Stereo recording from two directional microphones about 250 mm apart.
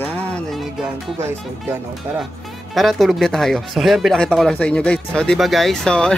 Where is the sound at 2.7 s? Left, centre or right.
Centre.